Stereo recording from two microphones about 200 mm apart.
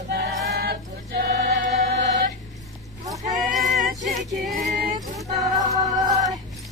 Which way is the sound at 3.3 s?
40° right (ahead or behind).